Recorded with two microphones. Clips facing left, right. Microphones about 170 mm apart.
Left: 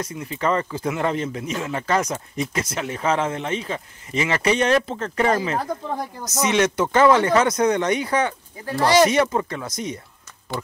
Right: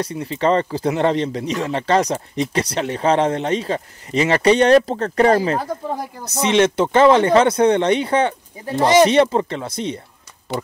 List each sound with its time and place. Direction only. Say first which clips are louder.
0.0 s speech: right 5 dB; 30° right (ahead or behind)